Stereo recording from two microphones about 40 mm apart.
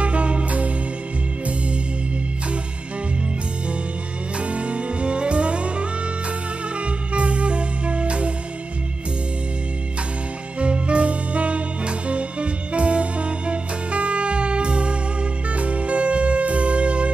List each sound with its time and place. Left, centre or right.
0.0 s music: right
4.4 s music: right
10.6 s music: right